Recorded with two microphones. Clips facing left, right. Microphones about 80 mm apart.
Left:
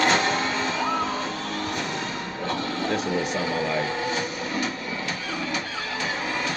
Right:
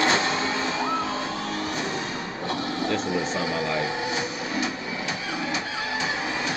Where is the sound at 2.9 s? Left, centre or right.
Right.